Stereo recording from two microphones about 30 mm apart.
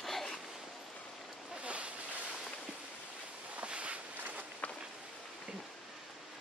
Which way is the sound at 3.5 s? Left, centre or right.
Right.